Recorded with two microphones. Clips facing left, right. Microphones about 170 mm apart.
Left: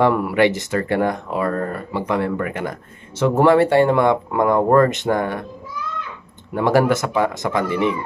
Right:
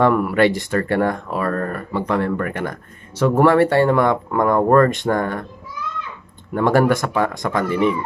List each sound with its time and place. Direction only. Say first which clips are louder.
0.0 s speech: right 1 dB; 20° left (ahead or behind)
6.5 s speech: right 1 dB; 10° left (ahead or behind)